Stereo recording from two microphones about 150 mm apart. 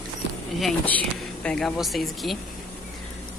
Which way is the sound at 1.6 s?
Centre (ahead or behind).